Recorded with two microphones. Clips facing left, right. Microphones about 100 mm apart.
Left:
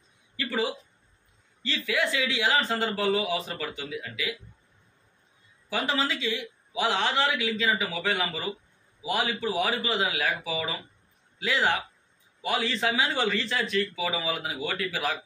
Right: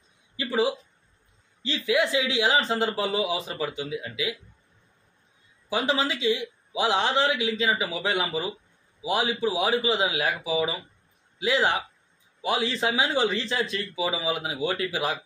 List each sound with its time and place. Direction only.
0.4 s a man's voice: 20° right (ahead or behind)
5.7 s a man's voice: 20° right (ahead or behind)